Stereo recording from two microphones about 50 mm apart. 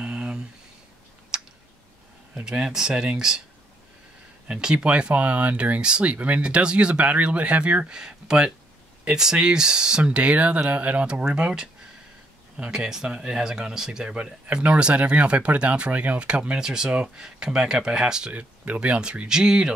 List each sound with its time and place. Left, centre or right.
0.0 s a sound: centre
1.3 s clicking: centre
2.4 s speech: centre
4.5 s speech: centre
5.8 s speech: centre
14.1 s speech: right
16.5 s speech: centre
18.3 s speech: right